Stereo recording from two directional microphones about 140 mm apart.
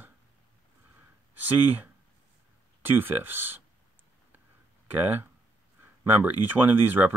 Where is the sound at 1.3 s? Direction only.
15° right (ahead or behind).